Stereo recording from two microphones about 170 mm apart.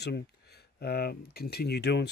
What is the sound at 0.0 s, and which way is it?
Speech, 75° left (ahead or behind).